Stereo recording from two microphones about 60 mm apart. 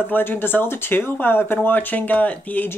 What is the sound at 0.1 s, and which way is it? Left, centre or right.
Speech, left.